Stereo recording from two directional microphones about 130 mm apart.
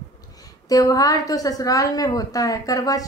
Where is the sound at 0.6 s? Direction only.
30° left (ahead or behind).